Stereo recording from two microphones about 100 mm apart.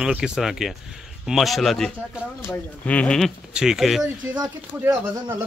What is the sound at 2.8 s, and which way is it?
Speech, 15° left (ahead or behind).